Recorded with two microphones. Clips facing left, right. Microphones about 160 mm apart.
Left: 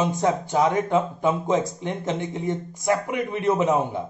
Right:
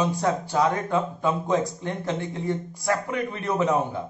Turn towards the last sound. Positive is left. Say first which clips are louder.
# left 2 dB
turn(degrees=20)  # may be behind; listen again after turning